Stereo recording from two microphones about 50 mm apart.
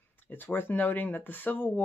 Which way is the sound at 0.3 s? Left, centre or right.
Left.